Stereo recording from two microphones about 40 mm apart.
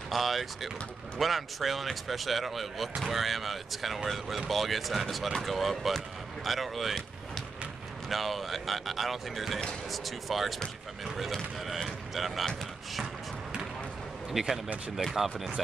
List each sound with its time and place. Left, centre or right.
0.1 s speech: centre
8.1 s speech: centre
11.6 s speech: centre
14.3 s speech: centre
15.0 s speech: right